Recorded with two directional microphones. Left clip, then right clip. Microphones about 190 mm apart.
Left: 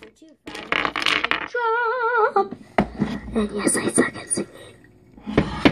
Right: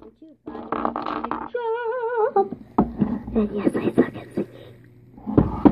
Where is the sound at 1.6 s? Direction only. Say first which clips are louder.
Left 4 dB; 15° left (ahead or behind).